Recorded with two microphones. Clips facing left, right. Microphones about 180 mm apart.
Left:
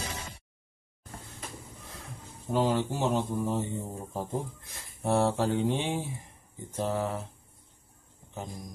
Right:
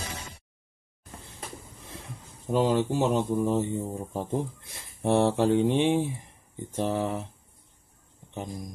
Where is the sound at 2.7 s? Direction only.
20° right (ahead or behind).